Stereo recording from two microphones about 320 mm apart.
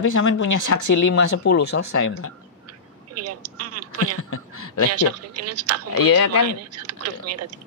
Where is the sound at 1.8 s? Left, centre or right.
Left.